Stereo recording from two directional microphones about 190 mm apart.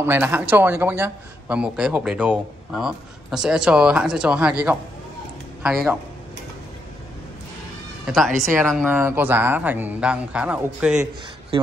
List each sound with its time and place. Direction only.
0.0 s a man's voice: 10° right (ahead or behind)
5.6 s a man's voice: 5° right (ahead or behind)
8.4 s speech: centre (ahead or behind)